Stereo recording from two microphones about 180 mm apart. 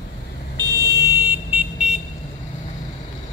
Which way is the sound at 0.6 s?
20° right (ahead or behind).